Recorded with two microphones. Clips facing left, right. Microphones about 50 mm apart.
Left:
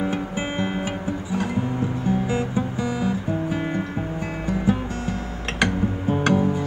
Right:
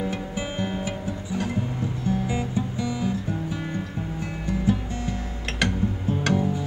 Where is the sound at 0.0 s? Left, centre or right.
Left.